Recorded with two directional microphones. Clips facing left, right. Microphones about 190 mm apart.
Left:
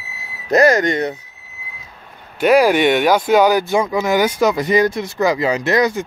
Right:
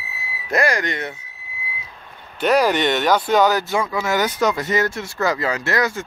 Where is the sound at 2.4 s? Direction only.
10° left (ahead or behind).